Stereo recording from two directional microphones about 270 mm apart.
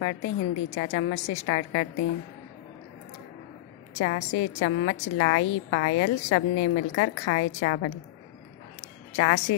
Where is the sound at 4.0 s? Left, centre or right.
Left.